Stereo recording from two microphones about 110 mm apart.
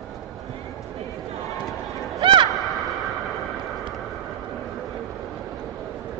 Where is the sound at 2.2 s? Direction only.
50° right (ahead or behind).